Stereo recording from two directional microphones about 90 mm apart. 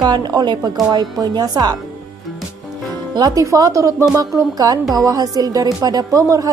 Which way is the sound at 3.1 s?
45° right (ahead or behind).